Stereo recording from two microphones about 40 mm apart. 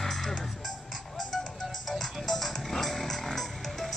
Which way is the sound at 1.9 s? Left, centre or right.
Centre.